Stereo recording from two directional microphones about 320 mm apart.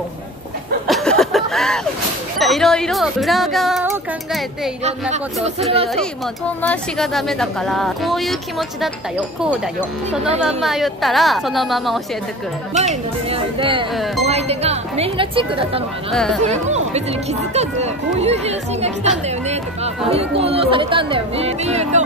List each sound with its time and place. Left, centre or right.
0.8 s a sound: centre
2.3 s speech: centre
6.6 s speech: centre
12.7 s speech: centre
13.9 s speech: centre
14.2 s speech: centre
16.1 s speech: centre
16.4 s speech: right